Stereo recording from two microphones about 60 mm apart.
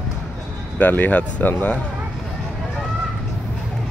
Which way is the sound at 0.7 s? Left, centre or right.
Left.